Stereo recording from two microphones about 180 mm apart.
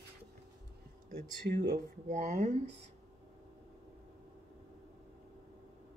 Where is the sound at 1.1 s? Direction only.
60° right (ahead or behind).